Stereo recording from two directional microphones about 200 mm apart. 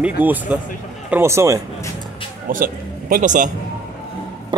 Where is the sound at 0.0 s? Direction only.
10° right (ahead or behind).